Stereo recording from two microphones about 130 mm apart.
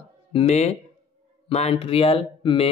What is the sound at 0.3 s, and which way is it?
Speech, 50° left (ahead or behind).